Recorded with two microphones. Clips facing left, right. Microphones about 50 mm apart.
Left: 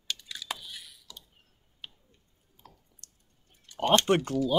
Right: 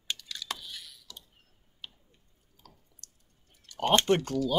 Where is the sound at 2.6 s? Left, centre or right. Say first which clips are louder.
Left 2 dB; left.